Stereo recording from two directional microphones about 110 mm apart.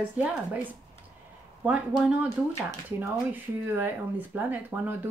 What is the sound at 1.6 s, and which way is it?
A woman's voice, 10° right (ahead or behind).